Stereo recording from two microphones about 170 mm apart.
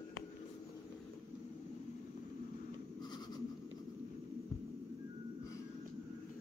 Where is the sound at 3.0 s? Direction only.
25° left (ahead or behind).